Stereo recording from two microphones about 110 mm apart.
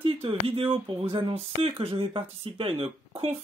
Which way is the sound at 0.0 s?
60° right (ahead or behind).